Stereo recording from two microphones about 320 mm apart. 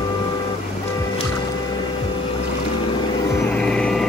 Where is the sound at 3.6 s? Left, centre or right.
Centre.